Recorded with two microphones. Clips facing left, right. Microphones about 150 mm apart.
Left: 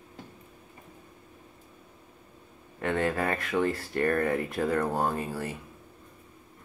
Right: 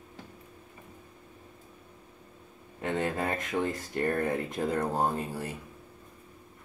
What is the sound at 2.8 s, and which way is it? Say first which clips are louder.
Speech: left 2 dB; 20° right (ahead or behind).